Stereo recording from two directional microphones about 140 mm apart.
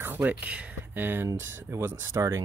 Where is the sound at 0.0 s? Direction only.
15° right (ahead or behind).